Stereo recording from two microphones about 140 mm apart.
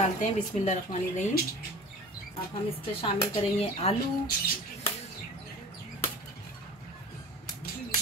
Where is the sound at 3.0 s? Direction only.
45° left (ahead or behind).